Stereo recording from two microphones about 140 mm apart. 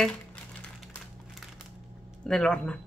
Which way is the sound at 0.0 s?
5° left (ahead or behind).